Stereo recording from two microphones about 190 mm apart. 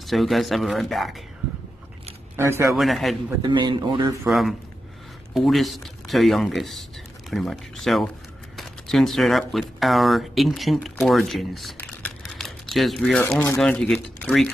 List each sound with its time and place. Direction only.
0.0 s speech: centre (ahead or behind)
2.3 s speech: 15° right (ahead or behind)
2.7 s speech: centre (ahead or behind)
3.4 s speech: 25° right (ahead or behind)
4.3 s speech: centre (ahead or behind)